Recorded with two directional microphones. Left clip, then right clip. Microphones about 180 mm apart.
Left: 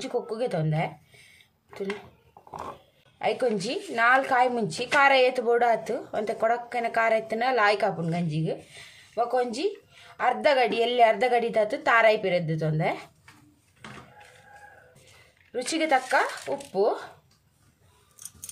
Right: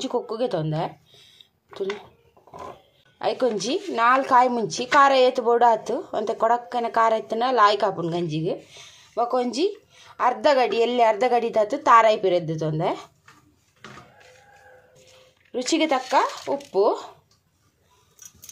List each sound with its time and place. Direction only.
0.0 s a woman's voice: 25° right (ahead or behind)
3.2 s a woman's voice: 30° right (ahead or behind)
15.5 s speech: 30° right (ahead or behind)